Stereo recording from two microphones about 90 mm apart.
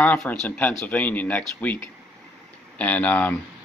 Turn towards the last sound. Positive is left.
turn(degrees=15)  # may be behind; listen again after turning